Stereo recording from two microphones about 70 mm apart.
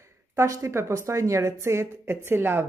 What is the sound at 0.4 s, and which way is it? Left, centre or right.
A woman's voice, right.